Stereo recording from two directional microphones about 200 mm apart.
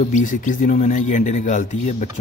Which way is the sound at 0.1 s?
40° left (ahead or behind).